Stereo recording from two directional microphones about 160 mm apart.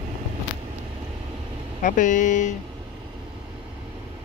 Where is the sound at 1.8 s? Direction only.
50° left (ahead or behind).